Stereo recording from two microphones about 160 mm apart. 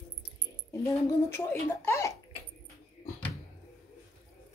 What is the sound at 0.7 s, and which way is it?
Speech, 20° left (ahead or behind).